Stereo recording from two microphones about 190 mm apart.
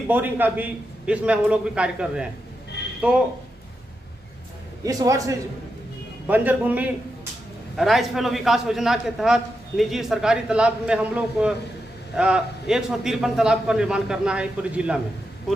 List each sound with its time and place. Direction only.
0.1 s a man's voice: 10° right (ahead or behind)
4.8 s a man's voice: 15° right (ahead or behind)